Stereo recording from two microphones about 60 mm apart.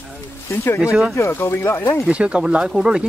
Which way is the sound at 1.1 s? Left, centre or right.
Left.